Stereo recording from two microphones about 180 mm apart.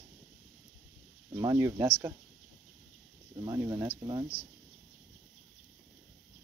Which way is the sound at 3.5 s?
20° right (ahead or behind).